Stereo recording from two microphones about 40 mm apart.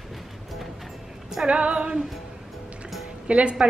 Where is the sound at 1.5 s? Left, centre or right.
Right.